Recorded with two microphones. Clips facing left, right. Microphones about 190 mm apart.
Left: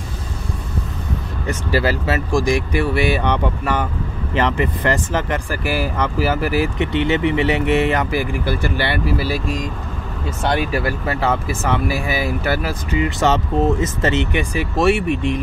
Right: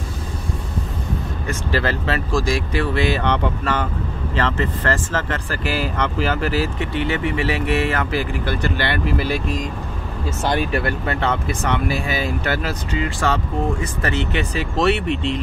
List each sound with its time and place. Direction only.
1.7 s speech: 10° left (ahead or behind)
10.4 s speech: centre (ahead or behind)